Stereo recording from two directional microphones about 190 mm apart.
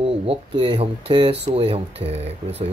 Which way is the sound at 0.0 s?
30° right (ahead or behind).